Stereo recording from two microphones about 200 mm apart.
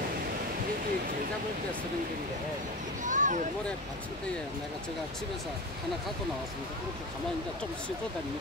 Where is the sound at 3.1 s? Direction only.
40° right (ahead or behind).